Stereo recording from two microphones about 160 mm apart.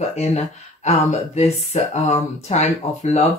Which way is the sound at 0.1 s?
45° left (ahead or behind).